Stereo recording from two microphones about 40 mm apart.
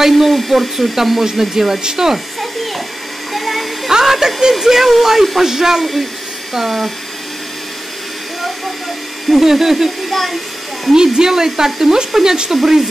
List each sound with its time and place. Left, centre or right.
0.0 s speech: centre
3.3 s hair dryer: centre
3.9 s a sound: centre
4.4 s speech: centre
9.3 s speech: centre